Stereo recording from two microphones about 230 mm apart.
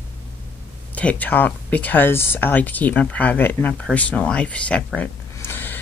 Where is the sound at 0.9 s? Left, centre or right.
Centre.